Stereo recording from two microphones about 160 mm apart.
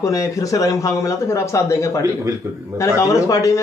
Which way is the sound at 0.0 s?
20° left (ahead or behind).